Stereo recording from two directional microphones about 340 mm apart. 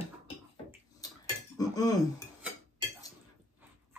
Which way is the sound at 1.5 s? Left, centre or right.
Centre.